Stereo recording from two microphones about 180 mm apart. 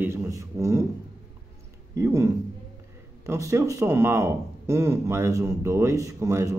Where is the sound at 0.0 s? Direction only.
15° right (ahead or behind).